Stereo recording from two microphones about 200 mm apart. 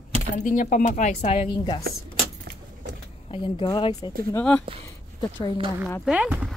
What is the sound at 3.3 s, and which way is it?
Speech, 25° left (ahead or behind).